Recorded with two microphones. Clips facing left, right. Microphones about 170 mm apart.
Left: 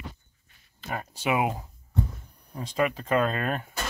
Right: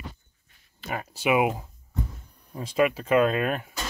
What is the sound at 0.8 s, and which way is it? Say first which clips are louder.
Speech: right 3 dB; 10° right (ahead or behind).